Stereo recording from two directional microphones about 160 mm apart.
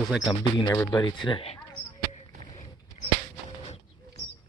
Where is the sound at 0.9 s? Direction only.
30° left (ahead or behind).